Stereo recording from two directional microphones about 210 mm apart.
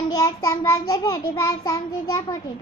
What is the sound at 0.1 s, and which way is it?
A child's voice, 15° left (ahead or behind).